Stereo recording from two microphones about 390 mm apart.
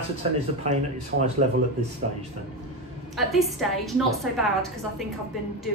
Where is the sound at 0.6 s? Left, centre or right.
Centre.